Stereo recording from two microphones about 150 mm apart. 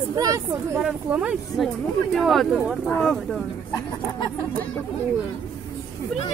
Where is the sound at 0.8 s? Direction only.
5° right (ahead or behind).